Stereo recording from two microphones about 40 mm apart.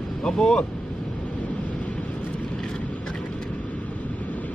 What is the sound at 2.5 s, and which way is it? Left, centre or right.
Vehicle, centre.